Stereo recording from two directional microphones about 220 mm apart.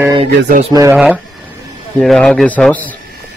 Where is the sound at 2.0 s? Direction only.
Centre (ahead or behind).